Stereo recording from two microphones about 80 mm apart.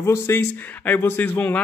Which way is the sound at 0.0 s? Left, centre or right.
Left.